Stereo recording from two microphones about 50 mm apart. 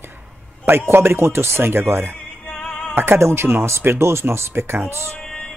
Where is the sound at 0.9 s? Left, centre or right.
Right.